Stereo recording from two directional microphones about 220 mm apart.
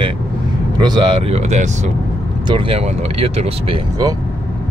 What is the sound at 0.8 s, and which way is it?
Speech, 20° right (ahead or behind).